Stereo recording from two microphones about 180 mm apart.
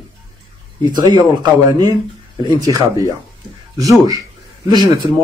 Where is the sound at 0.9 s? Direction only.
25° right (ahead or behind).